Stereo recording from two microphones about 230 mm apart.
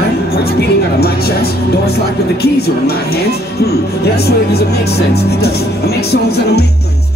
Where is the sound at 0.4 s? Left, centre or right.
Left.